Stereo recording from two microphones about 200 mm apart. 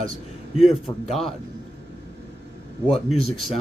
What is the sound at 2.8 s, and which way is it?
Speech, 30° left (ahead or behind).